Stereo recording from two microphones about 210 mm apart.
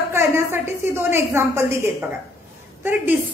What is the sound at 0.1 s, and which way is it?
A woman's voice, 10° right (ahead or behind).